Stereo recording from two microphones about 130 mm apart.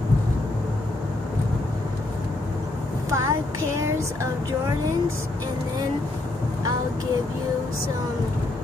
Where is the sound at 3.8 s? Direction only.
20° right (ahead or behind).